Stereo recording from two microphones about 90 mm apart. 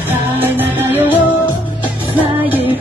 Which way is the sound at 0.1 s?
20° right (ahead or behind).